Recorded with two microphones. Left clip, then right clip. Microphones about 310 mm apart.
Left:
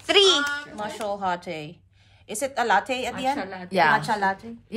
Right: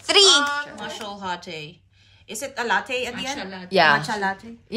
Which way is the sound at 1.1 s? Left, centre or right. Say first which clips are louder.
Left 6 dB; left.